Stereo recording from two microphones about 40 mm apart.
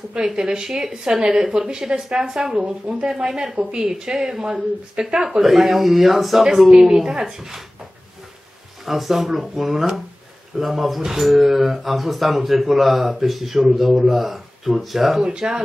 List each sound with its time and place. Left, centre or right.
0.1 s speech: centre
2.6 s a woman's voice: right
3.1 s a woman's voice: centre
5.4 s speech: centre
8.8 s speech: centre
15.2 s speech: centre